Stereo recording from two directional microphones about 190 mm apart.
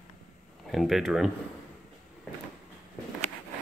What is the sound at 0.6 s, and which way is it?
Speech, centre (ahead or behind).